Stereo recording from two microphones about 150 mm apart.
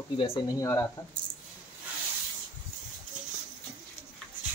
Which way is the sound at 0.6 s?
20° left (ahead or behind).